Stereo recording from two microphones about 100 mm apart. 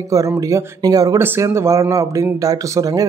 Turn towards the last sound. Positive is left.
turn(degrees=-35)  # may be behind; listen again after turning